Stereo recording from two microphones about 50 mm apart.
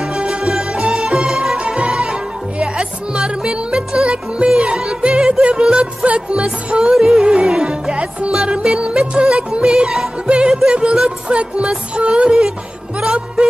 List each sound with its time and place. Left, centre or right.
0.4 s music: centre
1.6 s music: right
7.0 s music: centre
10.2 s music: centre